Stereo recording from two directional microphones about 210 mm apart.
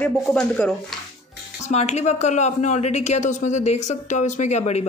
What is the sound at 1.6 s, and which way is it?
Speech, 30° left (ahead or behind).